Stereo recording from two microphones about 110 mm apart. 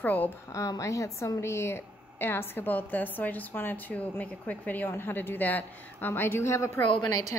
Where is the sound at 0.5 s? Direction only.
30° left (ahead or behind).